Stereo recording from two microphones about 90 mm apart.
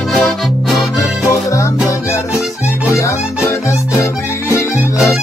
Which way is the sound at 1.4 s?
35° left (ahead or behind).